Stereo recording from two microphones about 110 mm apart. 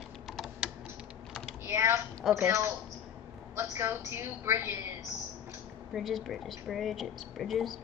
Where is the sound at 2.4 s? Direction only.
25° right (ahead or behind).